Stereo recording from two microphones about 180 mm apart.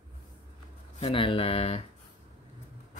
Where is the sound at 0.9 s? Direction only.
30° left (ahead or behind).